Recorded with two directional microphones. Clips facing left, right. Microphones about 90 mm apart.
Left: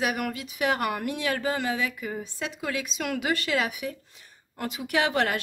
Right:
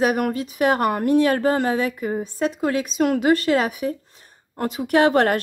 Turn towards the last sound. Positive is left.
turn(degrees=-45)  # may be behind; listen again after turning